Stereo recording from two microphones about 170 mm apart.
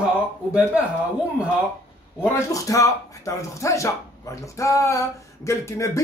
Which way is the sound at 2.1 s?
15° left (ahead or behind).